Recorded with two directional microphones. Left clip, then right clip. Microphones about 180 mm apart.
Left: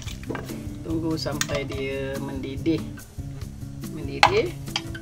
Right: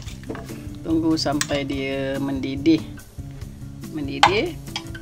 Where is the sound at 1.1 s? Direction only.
55° right (ahead or behind).